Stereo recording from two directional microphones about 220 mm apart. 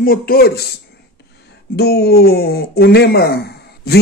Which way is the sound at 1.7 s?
45° left (ahead or behind).